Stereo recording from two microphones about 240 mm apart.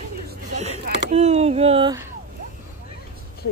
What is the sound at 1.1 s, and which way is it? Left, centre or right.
Speech, right.